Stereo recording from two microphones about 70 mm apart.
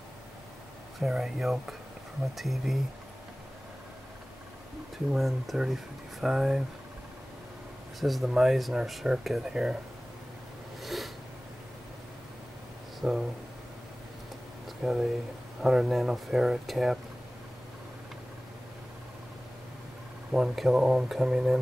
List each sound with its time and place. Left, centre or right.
0.9 s speech: centre
4.9 s speech: centre
8.0 s speech: centre
10.8 s a sound: centre
13.0 s speech: centre
14.8 s speech: centre
20.2 s speech: centre